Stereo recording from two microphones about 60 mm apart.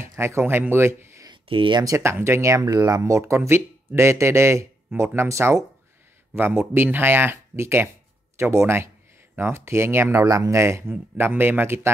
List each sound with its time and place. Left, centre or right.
0.2 s speech: right
2.6 s speech: right
10.2 s speech: right
10.9 s speech: right